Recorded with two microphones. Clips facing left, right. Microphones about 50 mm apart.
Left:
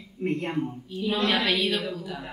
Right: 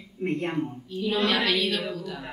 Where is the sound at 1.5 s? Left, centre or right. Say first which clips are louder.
Even; centre.